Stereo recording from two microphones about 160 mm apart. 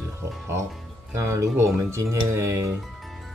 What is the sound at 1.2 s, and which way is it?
Speech, 20° right (ahead or behind).